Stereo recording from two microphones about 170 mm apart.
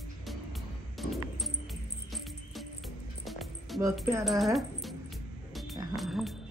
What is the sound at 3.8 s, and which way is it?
Speech, 15° right (ahead or behind).